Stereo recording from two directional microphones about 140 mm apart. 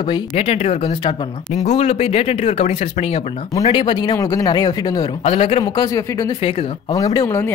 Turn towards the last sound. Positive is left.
turn(degrees=15)  # may be behind; listen again after turning